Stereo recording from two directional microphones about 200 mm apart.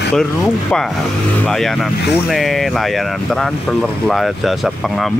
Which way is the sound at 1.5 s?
Centre (ahead or behind).